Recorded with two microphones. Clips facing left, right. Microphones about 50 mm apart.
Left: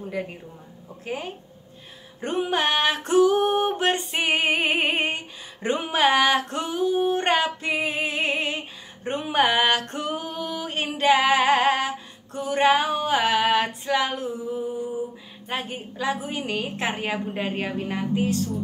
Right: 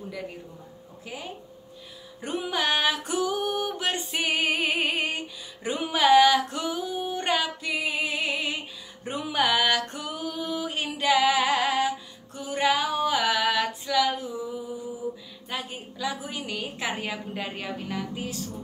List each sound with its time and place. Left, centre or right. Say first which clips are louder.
0.1 s female singing: left 5 dB; left
4.2 s music: left 2 dB; left
4.9 s a sound: left 3 dB; left
7.4 s female singing: left 4 dB; left
9.8 s singing: left 4 dB; left
10.5 s a sound: left 2 dB; left
11.0 s female singing: left 3 dB; left
14.1 s a sound: left 3 dB; left
14.5 s music: left 6 dB; left
15.4 s female singing: left 4 dB; left